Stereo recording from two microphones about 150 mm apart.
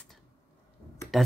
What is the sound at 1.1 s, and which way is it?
Speech, centre (ahead or behind).